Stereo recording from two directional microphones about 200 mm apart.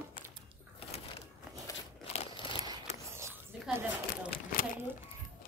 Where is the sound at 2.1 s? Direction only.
25° left (ahead or behind).